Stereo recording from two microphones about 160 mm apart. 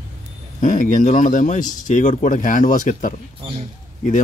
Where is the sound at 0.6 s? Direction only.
55° left (ahead or behind).